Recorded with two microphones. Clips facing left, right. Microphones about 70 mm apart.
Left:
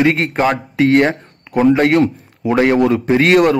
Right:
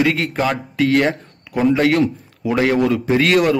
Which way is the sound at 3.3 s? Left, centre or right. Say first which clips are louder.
Left 4 dB; left.